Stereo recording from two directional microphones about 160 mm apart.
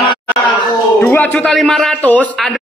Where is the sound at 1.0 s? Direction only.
10° left (ahead or behind).